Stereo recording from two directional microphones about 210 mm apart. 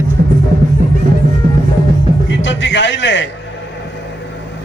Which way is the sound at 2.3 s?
60° left (ahead or behind).